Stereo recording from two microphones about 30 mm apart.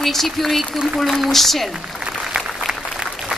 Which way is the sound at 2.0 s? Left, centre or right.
Right.